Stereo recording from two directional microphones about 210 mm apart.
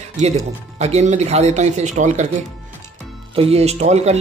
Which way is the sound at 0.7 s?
30° right (ahead or behind).